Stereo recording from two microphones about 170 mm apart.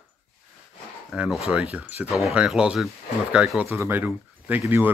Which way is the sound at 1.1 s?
5° right (ahead or behind).